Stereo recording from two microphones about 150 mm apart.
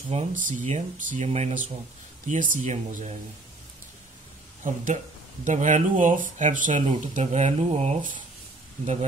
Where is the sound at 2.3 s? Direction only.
60° right (ahead or behind).